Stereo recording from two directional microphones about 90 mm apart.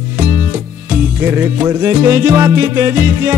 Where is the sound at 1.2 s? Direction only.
25° right (ahead or behind).